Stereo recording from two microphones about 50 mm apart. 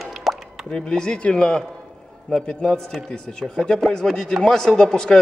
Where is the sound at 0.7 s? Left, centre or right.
Centre.